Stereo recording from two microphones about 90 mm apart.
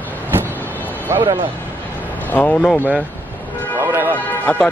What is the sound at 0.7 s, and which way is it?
Music, 20° left (ahead or behind).